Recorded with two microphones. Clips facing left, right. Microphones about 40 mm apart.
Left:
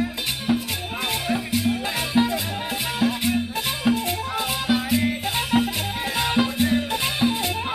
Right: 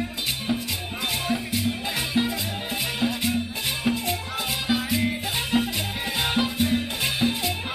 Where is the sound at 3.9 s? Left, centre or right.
Centre.